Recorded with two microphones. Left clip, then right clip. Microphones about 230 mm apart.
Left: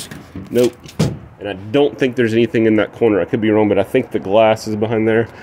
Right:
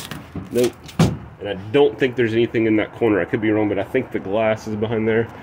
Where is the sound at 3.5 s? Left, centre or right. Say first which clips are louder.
Left 8 dB; left.